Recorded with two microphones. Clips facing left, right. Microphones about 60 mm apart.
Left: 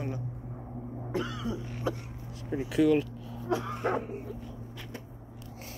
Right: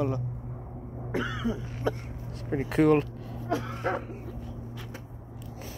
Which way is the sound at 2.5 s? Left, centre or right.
Right.